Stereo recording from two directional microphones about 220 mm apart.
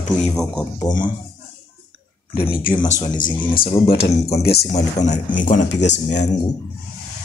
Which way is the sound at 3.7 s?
25° left (ahead or behind).